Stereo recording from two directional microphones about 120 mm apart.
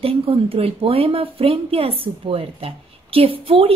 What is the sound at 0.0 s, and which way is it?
A woman's voice, 50° right (ahead or behind).